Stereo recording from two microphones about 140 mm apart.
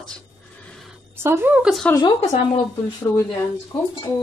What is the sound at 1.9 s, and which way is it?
Speech, 30° left (ahead or behind).